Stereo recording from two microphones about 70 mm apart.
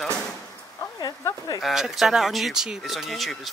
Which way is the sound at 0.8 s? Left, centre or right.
Left.